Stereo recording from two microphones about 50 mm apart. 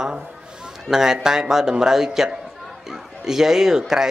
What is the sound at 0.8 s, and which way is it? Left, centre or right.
A man's voice, centre.